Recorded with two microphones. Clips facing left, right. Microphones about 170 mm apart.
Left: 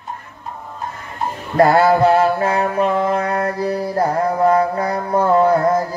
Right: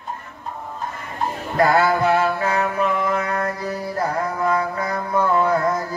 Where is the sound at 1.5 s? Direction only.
30° left (ahead or behind).